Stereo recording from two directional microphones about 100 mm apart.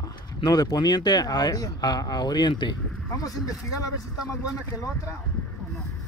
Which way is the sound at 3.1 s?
35° left (ahead or behind).